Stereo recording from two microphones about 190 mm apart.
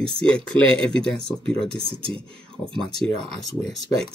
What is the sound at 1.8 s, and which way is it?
Speech, 30° right (ahead or behind).